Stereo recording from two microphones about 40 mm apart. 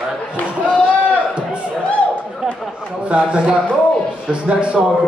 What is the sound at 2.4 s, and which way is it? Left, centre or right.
A man's voice, right.